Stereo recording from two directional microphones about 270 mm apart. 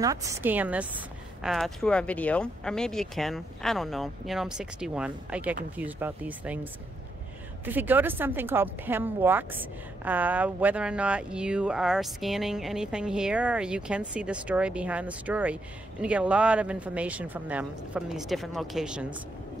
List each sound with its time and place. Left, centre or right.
0.0 s speech: centre